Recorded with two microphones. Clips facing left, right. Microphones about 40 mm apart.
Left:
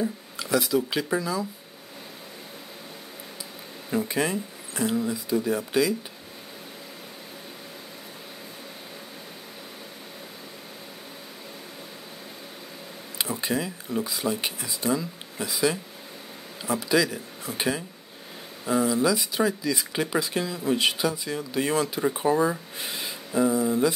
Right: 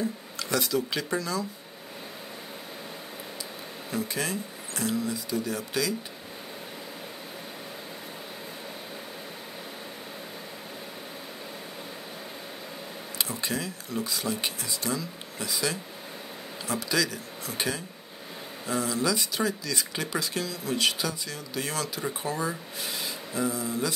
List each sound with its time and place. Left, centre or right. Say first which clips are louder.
0.0 s speech: left 2 dB; centre
3.9 s speech: left 5 dB; left
13.2 s speech: left 4 dB; centre